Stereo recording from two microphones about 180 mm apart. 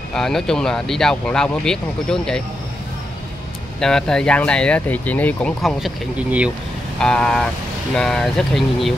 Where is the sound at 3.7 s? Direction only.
5° left (ahead or behind).